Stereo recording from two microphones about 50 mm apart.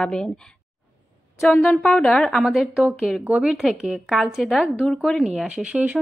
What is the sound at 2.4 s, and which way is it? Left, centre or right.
A woman's voice, centre.